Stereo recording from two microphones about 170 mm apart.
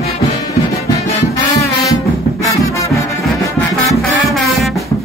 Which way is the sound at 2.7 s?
20° left (ahead or behind).